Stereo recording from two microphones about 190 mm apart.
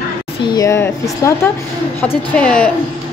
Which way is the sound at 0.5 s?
15° left (ahead or behind).